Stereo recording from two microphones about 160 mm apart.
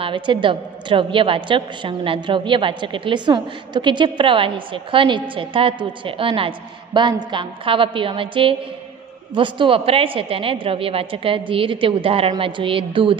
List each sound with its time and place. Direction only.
0.0 s a woman's voice: 30° right (ahead or behind)